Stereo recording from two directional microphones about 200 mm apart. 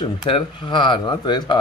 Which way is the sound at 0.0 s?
25° left (ahead or behind).